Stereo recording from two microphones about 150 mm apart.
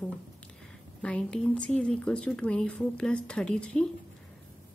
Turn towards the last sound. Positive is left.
turn(degrees=5)  # may be behind; listen again after turning